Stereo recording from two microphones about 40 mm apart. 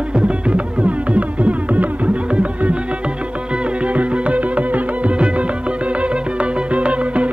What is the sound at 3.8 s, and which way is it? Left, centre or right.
Music, right.